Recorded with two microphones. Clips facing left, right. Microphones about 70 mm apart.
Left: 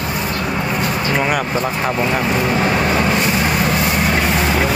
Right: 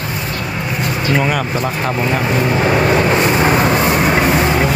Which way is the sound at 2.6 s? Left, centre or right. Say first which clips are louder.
Right 3 dB; centre.